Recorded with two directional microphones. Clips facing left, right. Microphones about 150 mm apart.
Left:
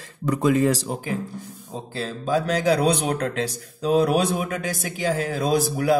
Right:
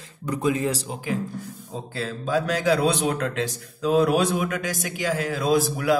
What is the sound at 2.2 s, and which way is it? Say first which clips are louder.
Speech: left 1 dB; 35° left (ahead or behind).